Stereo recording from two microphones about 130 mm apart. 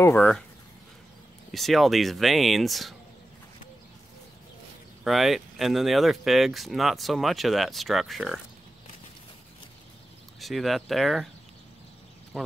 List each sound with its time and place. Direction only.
0.0 s speech: 20° left (ahead or behind)
1.5 s speech: centre (ahead or behind)
5.0 s speech: centre (ahead or behind)
10.4 s speech: centre (ahead or behind)
12.3 s speech: centre (ahead or behind)